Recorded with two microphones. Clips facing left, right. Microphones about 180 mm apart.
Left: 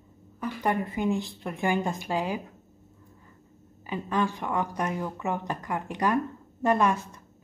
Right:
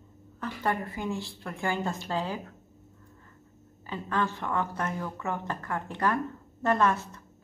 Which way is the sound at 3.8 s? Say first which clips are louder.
Left 3 dB; 15° left (ahead or behind).